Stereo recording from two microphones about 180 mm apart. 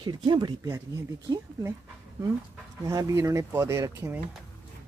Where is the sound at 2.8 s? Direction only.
20° right (ahead or behind).